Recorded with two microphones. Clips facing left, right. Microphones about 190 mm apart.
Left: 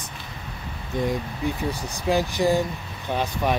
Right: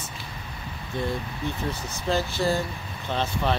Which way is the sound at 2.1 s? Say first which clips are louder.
Left 4 dB; 15° left (ahead or behind).